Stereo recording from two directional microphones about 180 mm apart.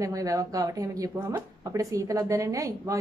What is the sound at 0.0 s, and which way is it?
Speech, 20° right (ahead or behind).